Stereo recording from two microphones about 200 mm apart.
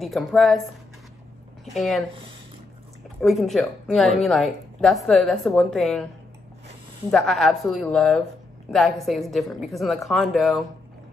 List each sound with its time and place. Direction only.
0.0 s a woman's voice: centre (ahead or behind)
3.2 s a woman's voice: centre (ahead or behind)
7.1 s a woman's voice: centre (ahead or behind)